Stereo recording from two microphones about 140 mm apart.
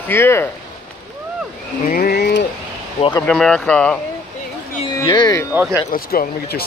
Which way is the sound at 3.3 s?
5° left (ahead or behind).